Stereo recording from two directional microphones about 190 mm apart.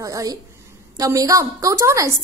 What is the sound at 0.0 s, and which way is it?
A woman's voice, 20° right (ahead or behind).